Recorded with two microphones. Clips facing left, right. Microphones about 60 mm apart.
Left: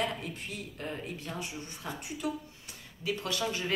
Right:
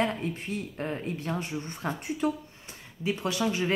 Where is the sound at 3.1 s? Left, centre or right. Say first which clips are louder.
Right 4 dB; right.